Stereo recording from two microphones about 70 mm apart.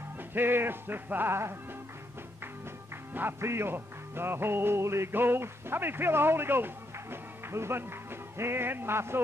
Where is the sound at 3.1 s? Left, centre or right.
Right.